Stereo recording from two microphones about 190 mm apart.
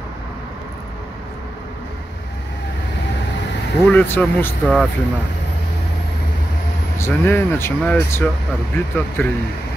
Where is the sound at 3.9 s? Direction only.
10° left (ahead or behind).